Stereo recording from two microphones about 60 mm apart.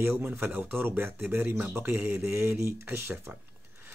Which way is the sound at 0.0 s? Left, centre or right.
Right.